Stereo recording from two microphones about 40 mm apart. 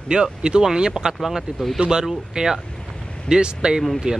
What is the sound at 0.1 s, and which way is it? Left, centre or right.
Speech, right.